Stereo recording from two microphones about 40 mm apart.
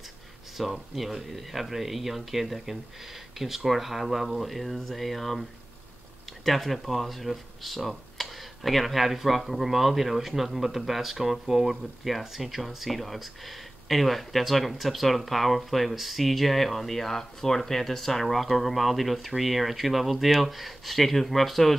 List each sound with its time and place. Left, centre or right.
0.6 s speech: centre
6.4 s speech: centre